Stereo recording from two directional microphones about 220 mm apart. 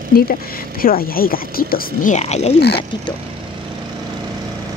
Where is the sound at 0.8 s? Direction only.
40° left (ahead or behind).